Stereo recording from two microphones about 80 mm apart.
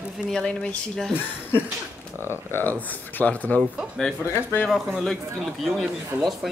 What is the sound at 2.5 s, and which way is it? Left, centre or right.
Speech, left.